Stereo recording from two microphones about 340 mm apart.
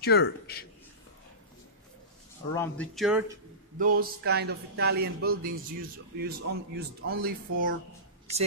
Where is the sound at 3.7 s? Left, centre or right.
Right.